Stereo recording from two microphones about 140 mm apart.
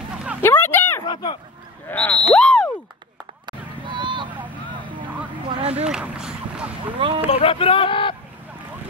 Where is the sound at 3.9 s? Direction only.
35° right (ahead or behind).